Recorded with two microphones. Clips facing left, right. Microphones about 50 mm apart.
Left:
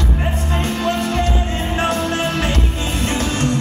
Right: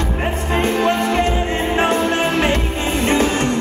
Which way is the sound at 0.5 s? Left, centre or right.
Right.